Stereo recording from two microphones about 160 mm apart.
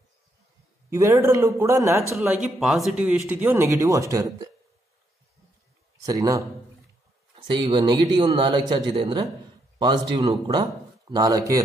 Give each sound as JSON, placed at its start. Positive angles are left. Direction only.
{"t": 0.8, "sound": "speech", "side_deg": -20}
{"t": 2.4, "sound": "speech", "side_deg": 0}
{"t": 3.4, "sound": "speech", "side_deg": -15}
{"t": 6.0, "sound": "speech", "side_deg": -20}
{"t": 7.3, "sound": "a man's voice", "side_deg": -30}